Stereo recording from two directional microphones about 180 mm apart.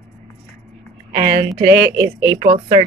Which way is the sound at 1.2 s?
55° right (ahead or behind).